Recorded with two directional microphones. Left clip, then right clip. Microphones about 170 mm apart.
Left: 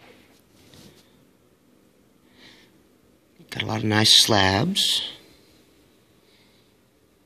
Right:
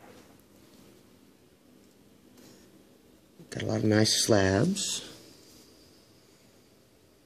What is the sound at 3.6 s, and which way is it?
Speech, 25° left (ahead or behind).